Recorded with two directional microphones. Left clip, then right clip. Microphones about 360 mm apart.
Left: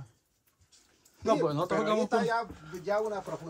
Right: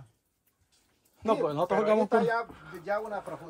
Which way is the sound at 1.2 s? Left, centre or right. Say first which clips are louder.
Right 1 dB; centre.